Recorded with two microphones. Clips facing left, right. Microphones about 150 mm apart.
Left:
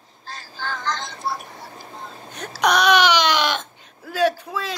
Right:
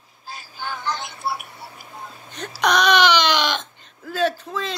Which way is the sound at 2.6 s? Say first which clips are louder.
Left 1 dB; 10° left (ahead or behind).